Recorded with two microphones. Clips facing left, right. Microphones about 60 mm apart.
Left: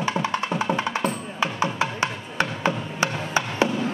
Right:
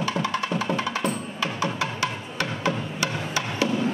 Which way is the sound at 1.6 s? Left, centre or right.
Left.